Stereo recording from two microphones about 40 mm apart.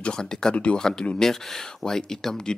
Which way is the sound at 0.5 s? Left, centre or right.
Left.